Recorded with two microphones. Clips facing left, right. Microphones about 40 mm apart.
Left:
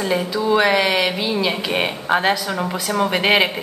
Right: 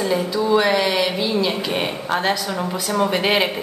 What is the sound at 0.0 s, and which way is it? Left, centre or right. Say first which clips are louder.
A woman's voice: even; centre.